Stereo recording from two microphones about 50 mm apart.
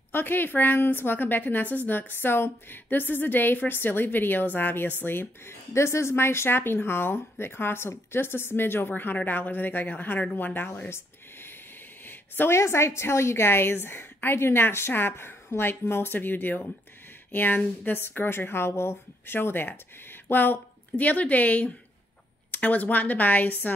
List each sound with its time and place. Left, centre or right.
0.1 s a woman's voice: left
5.7 s a woman's voice: left
12.1 s a sound: left
12.5 s a woman's voice: left